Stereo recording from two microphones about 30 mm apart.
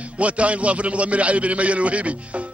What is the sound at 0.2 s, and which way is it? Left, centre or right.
Speech, right.